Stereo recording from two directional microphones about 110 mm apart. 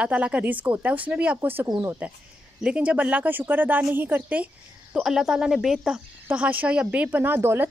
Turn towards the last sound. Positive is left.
turn(degrees=-20)  # may be behind; listen again after turning